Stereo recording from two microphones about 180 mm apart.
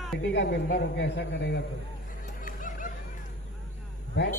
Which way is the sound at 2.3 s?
50° left (ahead or behind).